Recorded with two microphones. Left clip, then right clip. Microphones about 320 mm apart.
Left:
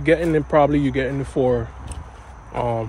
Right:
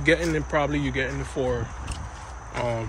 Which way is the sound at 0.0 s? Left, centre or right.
Centre.